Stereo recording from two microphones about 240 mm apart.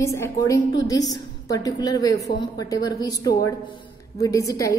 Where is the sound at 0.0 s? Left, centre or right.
Centre.